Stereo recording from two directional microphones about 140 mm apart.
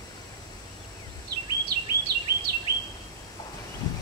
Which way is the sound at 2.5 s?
90° right.